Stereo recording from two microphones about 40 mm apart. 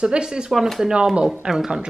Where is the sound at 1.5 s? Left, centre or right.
Centre.